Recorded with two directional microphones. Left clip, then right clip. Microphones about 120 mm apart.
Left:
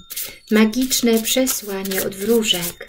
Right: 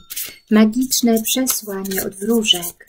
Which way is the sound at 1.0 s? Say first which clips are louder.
Left 2 dB; 35° right (ahead or behind).